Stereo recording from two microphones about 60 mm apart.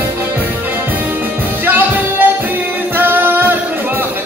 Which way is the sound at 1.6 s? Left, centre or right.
Right.